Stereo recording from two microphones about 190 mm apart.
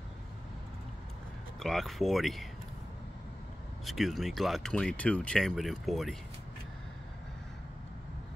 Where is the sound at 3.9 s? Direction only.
Centre (ahead or behind).